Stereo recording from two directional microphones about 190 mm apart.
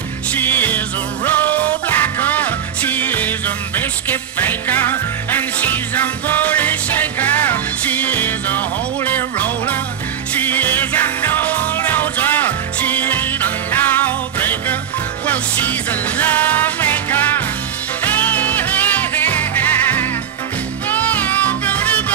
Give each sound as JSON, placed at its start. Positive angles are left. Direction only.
{"t": 0.3, "sound": "music", "side_deg": 10}